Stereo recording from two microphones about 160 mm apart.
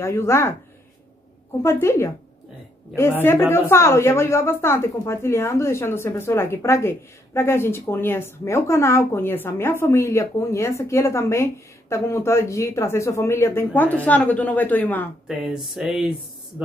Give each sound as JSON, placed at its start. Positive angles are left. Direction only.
{"t": 0.0, "sound": "a woman's voice", "side_deg": 15}
{"t": 1.6, "sound": "a woman's voice", "side_deg": 15}
{"t": 15.2, "sound": "speech", "side_deg": -5}